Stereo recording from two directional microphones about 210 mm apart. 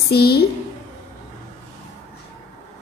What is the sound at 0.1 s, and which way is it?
Speech, 50° left (ahead or behind).